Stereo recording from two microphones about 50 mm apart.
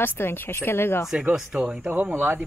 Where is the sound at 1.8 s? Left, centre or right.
Right.